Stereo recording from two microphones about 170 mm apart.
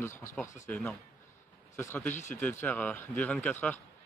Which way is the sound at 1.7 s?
15° left (ahead or behind).